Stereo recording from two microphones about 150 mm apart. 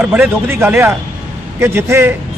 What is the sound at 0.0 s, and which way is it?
A man's voice, 10° right (ahead or behind).